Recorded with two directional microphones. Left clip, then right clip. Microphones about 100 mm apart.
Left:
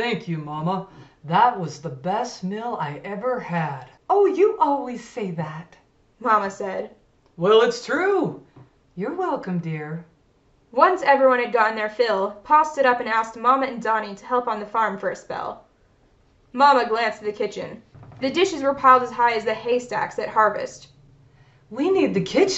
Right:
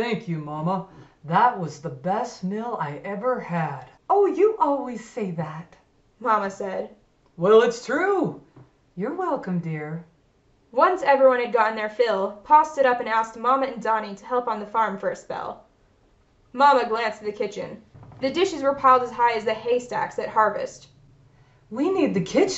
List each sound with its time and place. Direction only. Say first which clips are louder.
0.0 s speech: left 1 dB; 25° left (ahead or behind)
6.2 s a woman's voice: left 2 dB; 10° left (ahead or behind)
7.3 s speech: even; 25° left (ahead or behind)
10.7 s a woman's voice: left 2 dB; 10° left (ahead or behind)
16.5 s a woman's voice: left 1 dB; 10° left (ahead or behind)
21.7 s speech: left 2 dB; 25° left (ahead or behind)